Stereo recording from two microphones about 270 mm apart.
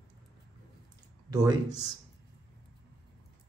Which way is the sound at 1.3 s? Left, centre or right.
Centre.